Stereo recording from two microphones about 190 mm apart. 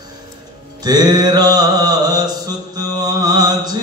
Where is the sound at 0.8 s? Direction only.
20° right (ahead or behind).